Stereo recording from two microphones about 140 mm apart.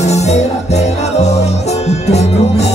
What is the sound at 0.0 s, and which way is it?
Music, 50° left (ahead or behind).